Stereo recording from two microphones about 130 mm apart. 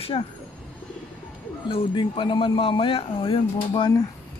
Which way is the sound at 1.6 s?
45° left (ahead or behind).